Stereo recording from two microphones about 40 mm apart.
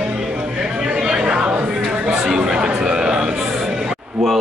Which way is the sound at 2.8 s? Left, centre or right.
Centre.